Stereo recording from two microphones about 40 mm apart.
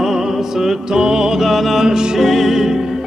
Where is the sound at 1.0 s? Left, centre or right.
Centre.